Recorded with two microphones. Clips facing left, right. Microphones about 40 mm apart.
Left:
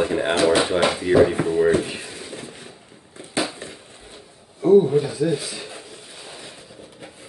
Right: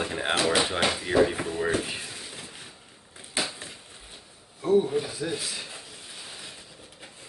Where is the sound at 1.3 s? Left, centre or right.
Centre.